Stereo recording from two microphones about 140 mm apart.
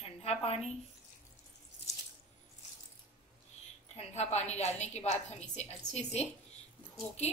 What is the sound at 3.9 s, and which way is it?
A woman's voice, 50° left (ahead or behind).